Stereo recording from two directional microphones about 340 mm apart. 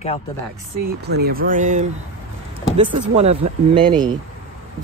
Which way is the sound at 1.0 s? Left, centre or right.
Right.